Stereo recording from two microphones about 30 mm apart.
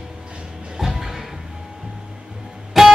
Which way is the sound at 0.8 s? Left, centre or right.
Centre.